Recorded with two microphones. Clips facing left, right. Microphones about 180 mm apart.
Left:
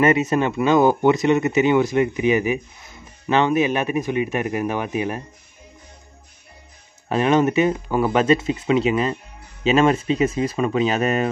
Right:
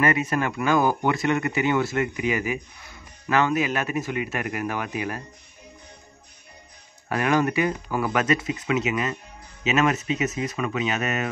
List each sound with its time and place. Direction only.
0.0 s speech: 25° left (ahead or behind)
7.1 s speech: 25° left (ahead or behind)